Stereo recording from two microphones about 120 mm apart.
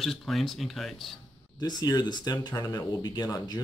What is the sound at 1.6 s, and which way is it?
Speech, 35° left (ahead or behind).